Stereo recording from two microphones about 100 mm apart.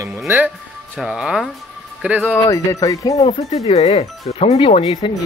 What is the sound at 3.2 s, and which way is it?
Speech, 80° left.